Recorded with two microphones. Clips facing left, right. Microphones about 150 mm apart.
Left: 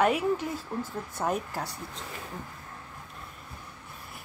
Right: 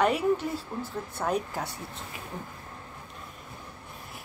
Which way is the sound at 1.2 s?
Centre (ahead or behind).